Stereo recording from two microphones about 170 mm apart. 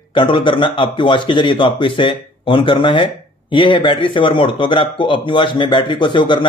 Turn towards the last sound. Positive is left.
turn(degrees=25)  # may be behind; listen again after turning